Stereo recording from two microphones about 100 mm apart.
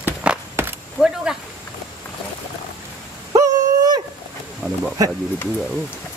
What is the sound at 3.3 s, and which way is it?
Owl, 40° right (ahead or behind).